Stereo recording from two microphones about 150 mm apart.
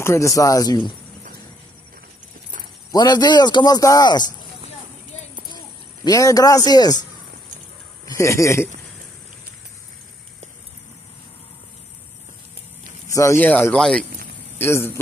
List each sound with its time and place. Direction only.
0.0 s speech: 20° left (ahead or behind)
2.9 s speech: 25° left (ahead or behind)
6.0 s speech: 25° left (ahead or behind)
8.1 s speech: 20° left (ahead or behind)
13.1 s speech: 20° left (ahead or behind)
14.6 s speech: 15° left (ahead or behind)